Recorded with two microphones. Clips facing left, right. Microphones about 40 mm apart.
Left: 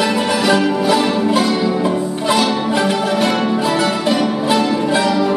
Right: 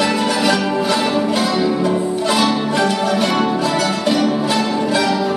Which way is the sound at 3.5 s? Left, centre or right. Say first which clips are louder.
Left 2 dB; centre.